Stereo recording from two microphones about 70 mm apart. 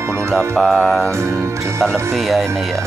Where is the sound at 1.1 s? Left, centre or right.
Right.